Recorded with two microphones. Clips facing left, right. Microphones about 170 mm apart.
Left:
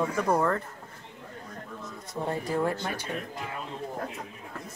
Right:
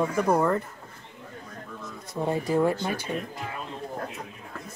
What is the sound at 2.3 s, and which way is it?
Speech, 15° right (ahead or behind).